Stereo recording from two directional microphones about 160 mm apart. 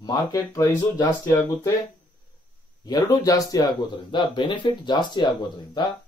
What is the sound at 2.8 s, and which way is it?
Speech, 25° left (ahead or behind).